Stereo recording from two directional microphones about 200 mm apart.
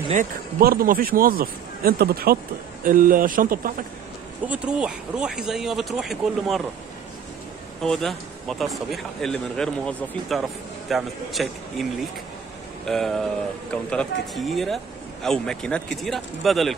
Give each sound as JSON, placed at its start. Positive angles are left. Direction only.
{"t": 0.1, "sound": "speech", "side_deg": -45}
{"t": 4.5, "sound": "speech", "side_deg": -5}
{"t": 7.8, "sound": "speech", "side_deg": 0}